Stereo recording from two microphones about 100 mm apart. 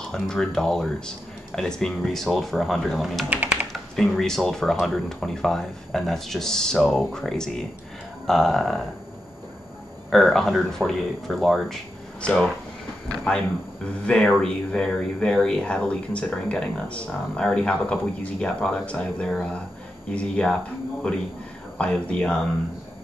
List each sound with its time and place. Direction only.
0.1 s speech: 5° left (ahead or behind)
3.3 s speech: 15° right (ahead or behind)
3.7 s speech: 5° left (ahead or behind)
10.1 s speech: centre (ahead or behind)
13.8 s speech: 10° left (ahead or behind)